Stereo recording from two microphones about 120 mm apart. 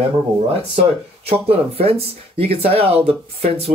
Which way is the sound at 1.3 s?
55° right (ahead or behind).